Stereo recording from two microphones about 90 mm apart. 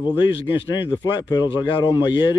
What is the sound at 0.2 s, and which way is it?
Speech, 70° left (ahead or behind).